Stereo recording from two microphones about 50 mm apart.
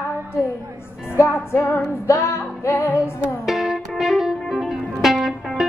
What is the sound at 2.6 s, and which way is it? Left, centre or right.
Music, left.